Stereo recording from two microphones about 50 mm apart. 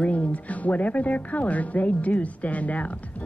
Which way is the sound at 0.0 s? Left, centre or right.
Left.